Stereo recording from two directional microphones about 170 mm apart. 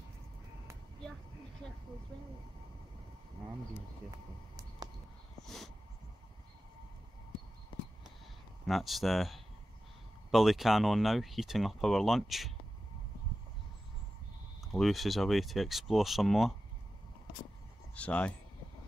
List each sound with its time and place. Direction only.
1.6 s vehicle: 5° left (ahead or behind)
4.8 s a sound: 20° right (ahead or behind)
8.6 s speech: centre (ahead or behind)
14.7 s speech: centre (ahead or behind)
17.9 s speech: 10° left (ahead or behind)